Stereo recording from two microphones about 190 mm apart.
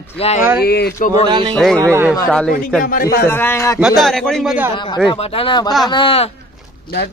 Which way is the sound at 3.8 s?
Centre (ahead or behind).